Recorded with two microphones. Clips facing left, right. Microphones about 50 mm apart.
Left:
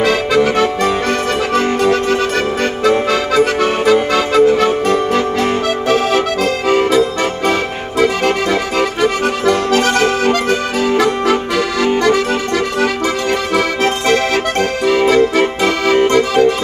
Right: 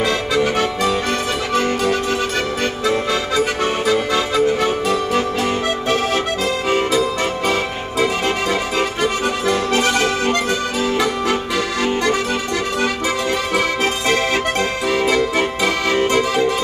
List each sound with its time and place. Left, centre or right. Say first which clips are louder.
0.0 s accordion: left 5 dB; left
4.6 s music: left 5 dB; left
6.8 s accordion: left 5 dB; left
9.5 s accordion: left 4 dB; left
11.8 s accordion: left 6 dB; left
14.9 s music: left 7 dB; left
16.1 s accordion: left 5 dB; left